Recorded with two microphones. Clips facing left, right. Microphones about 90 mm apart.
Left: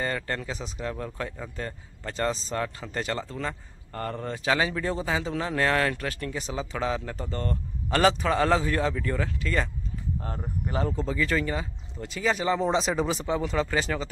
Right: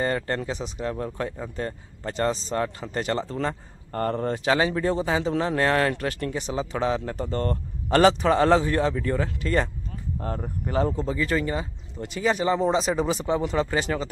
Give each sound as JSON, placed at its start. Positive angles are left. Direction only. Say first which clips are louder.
{"t": 0.0, "sound": "speech", "louder": "right 4 dB", "side_deg": -30}
{"t": 11.0, "sound": "speech", "louder": "right 2 dB", "side_deg": -20}
{"t": 12.6, "sound": "speech", "louder": "right 2 dB", "side_deg": -5}
{"t": 13.3, "sound": "speech", "louder": "right 3 dB", "side_deg": -20}